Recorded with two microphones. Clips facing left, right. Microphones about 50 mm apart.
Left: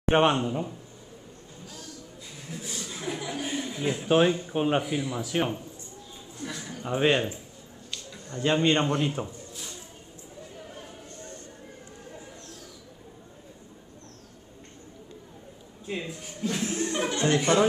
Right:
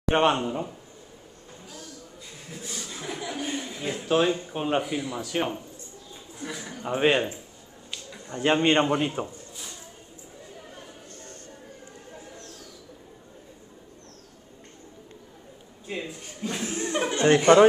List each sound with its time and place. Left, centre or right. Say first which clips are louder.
0.1 s speech: even; centre
0.5 s a man's voice: even; centre
2.5 s chuckle: left 1 dB; centre
3.6 s a sound: left 3 dB; centre
4.0 s speech: left 1 dB; centre
4.3 s speech: left 1 dB; centre
6.3 s a sound: right 1 dB; centre
8.3 s a man's voice: right 2 dB; right
8.8 s a man's voice: right 2 dB; centre
15.9 s chuckle: even; centre
17.2 s speech: right 7 dB; right